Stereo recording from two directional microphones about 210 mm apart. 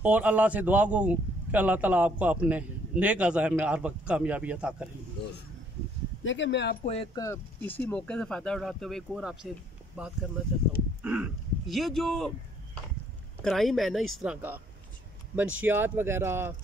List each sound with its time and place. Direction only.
0.0 s a man's voice: 5° right (ahead or behind)
6.2 s speech: 60° left (ahead or behind)
6.8 s speech: 30° left (ahead or behind)
7.2 s speech: 10° left (ahead or behind)
13.4 s a man's voice: centre (ahead or behind)